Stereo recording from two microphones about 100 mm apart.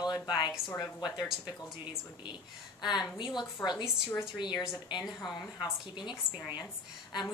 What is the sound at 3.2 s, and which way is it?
Speech, 50° left (ahead or behind).